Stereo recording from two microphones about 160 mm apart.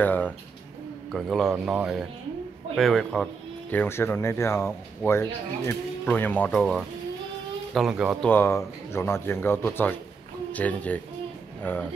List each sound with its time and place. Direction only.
0.0 s a sound: 10° left (ahead or behind)
1.1 s speech: centre (ahead or behind)
3.7 s speech: 15° left (ahead or behind); by 8.2 s 5° right (ahead or behind)
8.2 s speech: 10° left (ahead or behind)